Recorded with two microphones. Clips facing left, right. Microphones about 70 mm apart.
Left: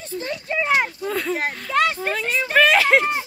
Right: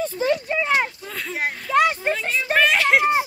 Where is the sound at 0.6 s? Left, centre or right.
Centre.